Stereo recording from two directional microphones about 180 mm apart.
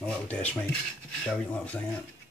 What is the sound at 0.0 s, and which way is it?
Speech, 10° left (ahead or behind).